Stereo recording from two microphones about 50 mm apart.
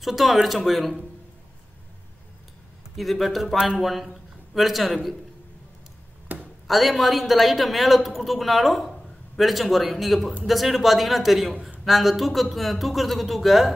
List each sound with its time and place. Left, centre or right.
0.0 s a woman's voice: centre
3.0 s a woman's voice: centre
6.3 s a sound: right
6.7 s a woman's voice: centre